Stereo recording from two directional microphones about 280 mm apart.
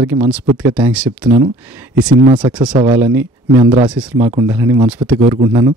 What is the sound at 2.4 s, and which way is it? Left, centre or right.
Speech, centre.